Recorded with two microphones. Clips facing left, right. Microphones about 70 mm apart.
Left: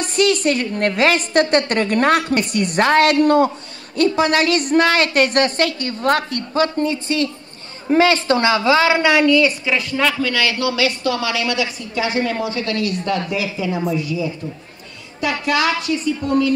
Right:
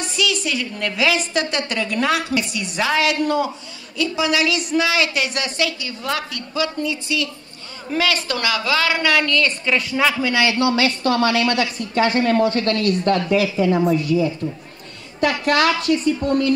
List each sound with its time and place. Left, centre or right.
0.0 s a woman's voice: left; by 9.5 s centre
9.7 s speech: centre
10.2 s a man's voice: right
11.1 s a woman's voice: right